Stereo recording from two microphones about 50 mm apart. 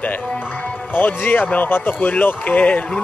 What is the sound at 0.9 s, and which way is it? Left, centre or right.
Speech, left.